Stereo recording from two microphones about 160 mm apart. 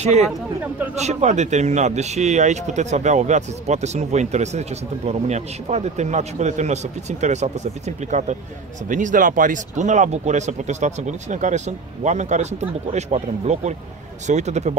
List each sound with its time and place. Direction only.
0.0 s speech: 45° right (ahead or behind)